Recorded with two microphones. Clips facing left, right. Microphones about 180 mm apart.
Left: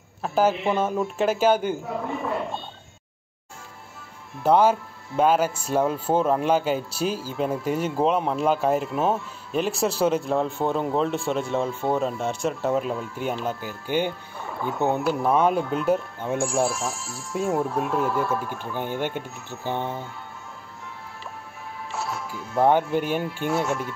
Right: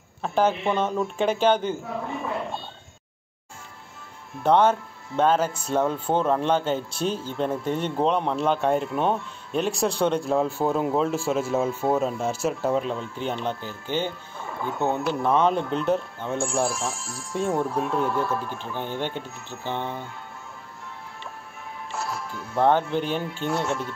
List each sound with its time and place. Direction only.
0.2 s speech: 5° left (ahead or behind)
4.4 s speech: 10° left (ahead or behind)
14.4 s music: centre (ahead or behind)
14.8 s speech: 15° left (ahead or behind)
21.9 s speech: centre (ahead or behind)